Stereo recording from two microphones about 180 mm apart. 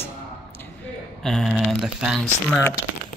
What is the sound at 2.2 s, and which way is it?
Speech, 10° left (ahead or behind).